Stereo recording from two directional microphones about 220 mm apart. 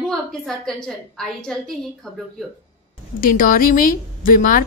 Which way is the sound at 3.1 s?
40° left (ahead or behind).